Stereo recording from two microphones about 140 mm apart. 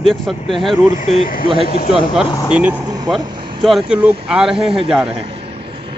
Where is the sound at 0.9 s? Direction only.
80° left.